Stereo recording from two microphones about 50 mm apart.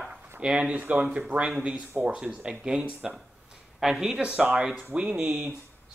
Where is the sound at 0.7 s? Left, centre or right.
Right.